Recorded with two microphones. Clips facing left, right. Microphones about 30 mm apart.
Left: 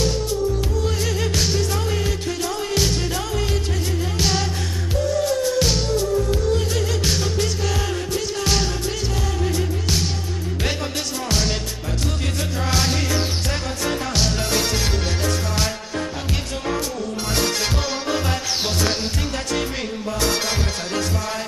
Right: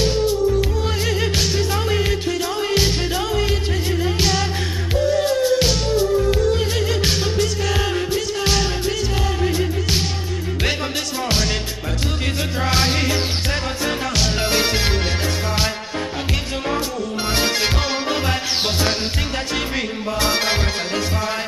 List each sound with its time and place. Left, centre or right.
0.0 s music: right
5.0 s music: right
12.6 s music: right
14.4 s music: right
20.1 s music: right